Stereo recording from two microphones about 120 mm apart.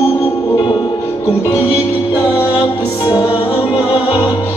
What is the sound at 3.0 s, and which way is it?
Music, 40° left (ahead or behind).